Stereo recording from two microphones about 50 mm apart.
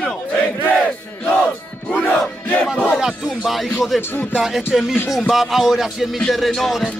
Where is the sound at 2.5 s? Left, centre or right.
Left.